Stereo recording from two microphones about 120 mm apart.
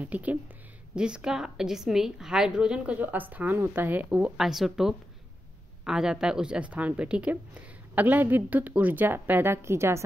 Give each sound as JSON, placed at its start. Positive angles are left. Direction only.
{"t": 0.0, "sound": "a woman's voice", "side_deg": -10}